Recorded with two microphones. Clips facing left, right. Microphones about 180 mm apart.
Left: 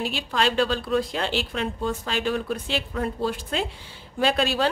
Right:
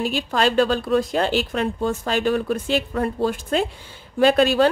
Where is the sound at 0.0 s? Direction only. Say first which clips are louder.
Right 4 dB; 45° right (ahead or behind).